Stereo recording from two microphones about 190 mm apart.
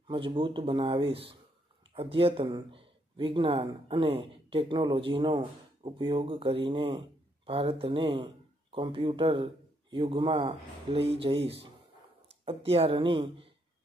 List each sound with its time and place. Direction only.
0.1 s speech: 25° right (ahead or behind)